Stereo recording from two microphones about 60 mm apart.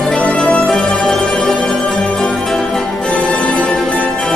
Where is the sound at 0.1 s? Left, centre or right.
Centre.